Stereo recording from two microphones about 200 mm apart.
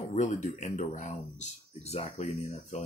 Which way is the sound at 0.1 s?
40° left (ahead or behind).